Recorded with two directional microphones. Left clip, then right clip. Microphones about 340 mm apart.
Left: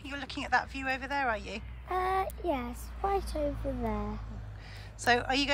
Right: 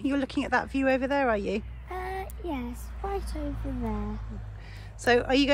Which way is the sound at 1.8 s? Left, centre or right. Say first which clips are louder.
Left 10 dB; centre.